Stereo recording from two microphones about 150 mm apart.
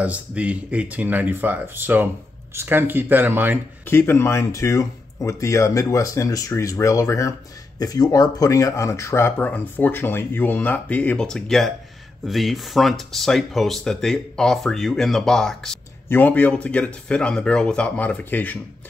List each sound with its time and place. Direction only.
0.0 s speech: 10° right (ahead or behind)
3.8 s speech: 15° left (ahead or behind)